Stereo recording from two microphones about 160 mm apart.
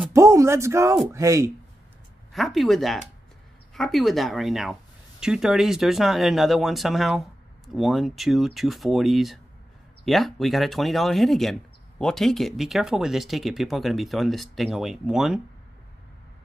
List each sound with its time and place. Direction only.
0.1 s a sound: 15° right (ahead or behind)
1.0 s speech: 20° right (ahead or behind)
2.3 s speech: centre (ahead or behind)